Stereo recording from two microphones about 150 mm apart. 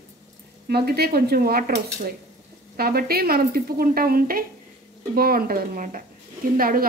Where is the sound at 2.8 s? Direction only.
90° right.